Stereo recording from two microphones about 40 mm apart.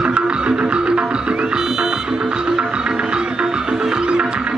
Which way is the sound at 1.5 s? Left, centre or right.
Centre.